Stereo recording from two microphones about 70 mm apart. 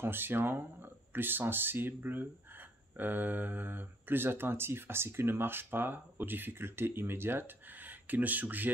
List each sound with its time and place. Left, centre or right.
0.0 s speech: right